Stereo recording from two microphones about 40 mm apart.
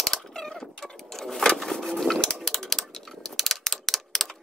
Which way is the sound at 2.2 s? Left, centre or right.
Centre.